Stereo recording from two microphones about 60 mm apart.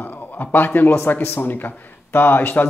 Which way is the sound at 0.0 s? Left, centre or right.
Left.